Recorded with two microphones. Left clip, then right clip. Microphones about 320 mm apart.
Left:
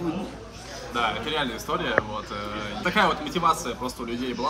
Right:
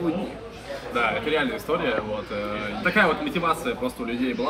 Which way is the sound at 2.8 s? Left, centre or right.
Centre.